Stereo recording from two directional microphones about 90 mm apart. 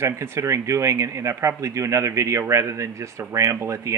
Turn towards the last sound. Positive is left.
turn(degrees=-30)  # may be behind; listen again after turning